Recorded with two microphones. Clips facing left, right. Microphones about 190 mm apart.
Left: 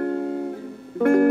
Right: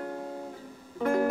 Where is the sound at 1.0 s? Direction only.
60° left (ahead or behind).